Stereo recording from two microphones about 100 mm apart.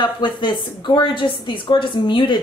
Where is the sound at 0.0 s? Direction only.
50° left (ahead or behind).